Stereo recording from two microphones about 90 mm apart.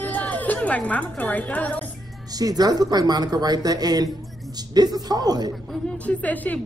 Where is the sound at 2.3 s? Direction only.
45° right (ahead or behind).